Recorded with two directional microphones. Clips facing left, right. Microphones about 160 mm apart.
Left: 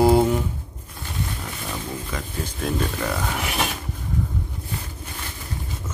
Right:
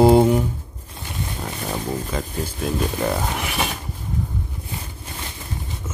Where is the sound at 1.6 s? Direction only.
40° right (ahead or behind).